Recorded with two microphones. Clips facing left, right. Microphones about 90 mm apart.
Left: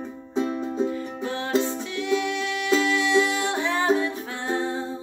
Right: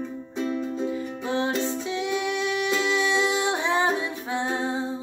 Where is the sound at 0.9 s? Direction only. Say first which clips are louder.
Right 1 dB; 20° right (ahead or behind).